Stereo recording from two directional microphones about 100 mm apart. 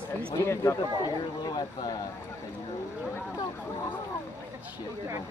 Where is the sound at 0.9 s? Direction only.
45° left (ahead or behind).